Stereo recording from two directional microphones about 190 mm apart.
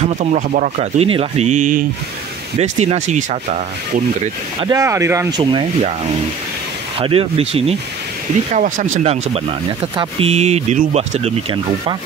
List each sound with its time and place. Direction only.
0.0 s speech: 40° right (ahead or behind)
4.6 s speech: 20° right (ahead or behind)
5.4 s speech: 25° right (ahead or behind)
7.0 s speech: 30° right (ahead or behind)
8.5 s speech: 40° right (ahead or behind)